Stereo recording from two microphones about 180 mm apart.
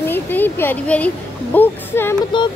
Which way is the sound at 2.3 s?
25° left (ahead or behind).